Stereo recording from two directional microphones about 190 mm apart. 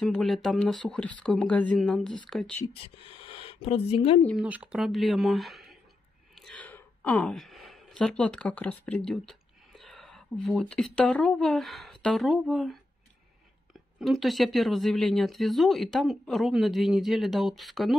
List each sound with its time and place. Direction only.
0.0 s speech: centre (ahead or behind)
2.6 s speech: 25° left (ahead or behind)
4.2 s speech: 5° left (ahead or behind)
13.7 s speech: centre (ahead or behind)